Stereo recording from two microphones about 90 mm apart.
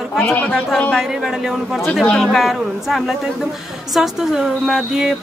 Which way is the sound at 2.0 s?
10° left (ahead or behind).